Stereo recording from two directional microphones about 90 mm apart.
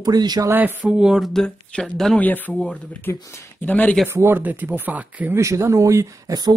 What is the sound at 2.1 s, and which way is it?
Speech, 20° left (ahead or behind).